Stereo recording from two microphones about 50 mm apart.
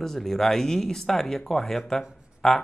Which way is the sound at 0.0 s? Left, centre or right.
Centre.